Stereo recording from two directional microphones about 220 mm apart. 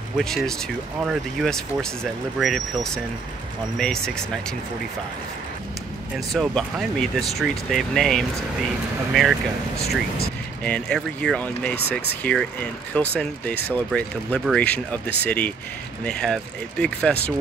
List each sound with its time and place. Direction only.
0.2 s speech: centre (ahead or behind)
6.1 s speech: centre (ahead or behind)
9.8 s speech: 45° left (ahead or behind)
10.6 s speech: 5° left (ahead or behind)